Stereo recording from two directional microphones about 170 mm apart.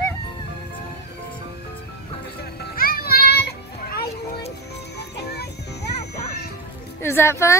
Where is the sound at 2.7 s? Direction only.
60° left (ahead or behind).